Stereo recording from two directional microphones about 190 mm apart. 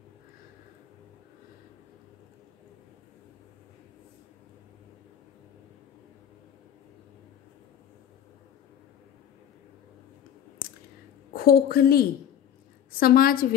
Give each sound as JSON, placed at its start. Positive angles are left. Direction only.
{"t": 11.3, "sound": "a woman's voice", "side_deg": 55}